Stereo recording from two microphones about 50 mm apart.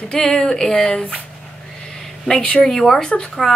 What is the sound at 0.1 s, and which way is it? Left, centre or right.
Speech, centre.